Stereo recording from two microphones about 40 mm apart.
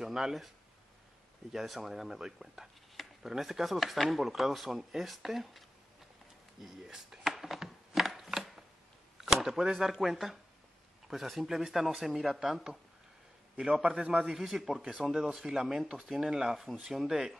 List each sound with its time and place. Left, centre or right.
0.0 s speech: centre
1.5 s speech: centre
6.9 s a sound: centre
7.5 s chopping: centre
9.2 s speech: centre
13.6 s a man's voice: right
14.3 s speech: centre